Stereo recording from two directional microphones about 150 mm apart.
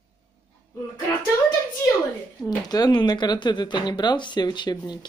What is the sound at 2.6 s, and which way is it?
Speech, 25° left (ahead or behind).